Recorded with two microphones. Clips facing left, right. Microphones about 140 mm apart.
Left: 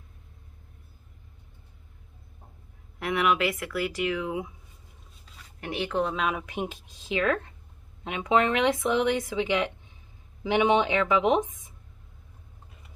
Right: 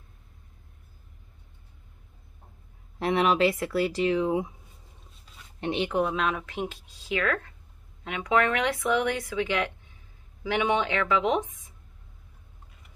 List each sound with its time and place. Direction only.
3.0 s speech: 30° right (ahead or behind)
5.6 s speech: 20° right (ahead or behind)
6.1 s speech: 5° left (ahead or behind)